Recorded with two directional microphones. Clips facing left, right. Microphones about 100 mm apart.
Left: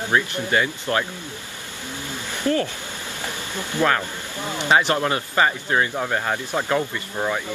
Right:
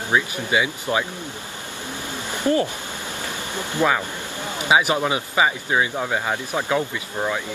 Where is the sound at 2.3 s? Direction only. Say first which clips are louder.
Right 2 dB; 20° right (ahead or behind).